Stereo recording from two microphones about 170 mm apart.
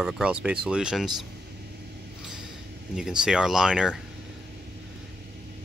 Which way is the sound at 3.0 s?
5° right (ahead or behind).